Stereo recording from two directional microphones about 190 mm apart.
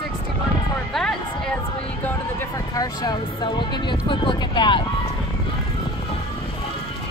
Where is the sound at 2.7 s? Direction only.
20° left (ahead or behind).